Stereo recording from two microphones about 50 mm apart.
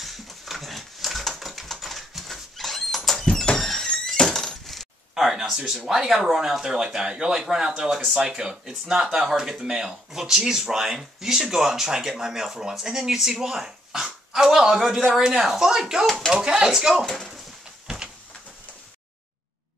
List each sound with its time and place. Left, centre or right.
0.0 s dog: centre
3.5 s breaking: centre
5.1 s speech: centre
17.8 s a sound: centre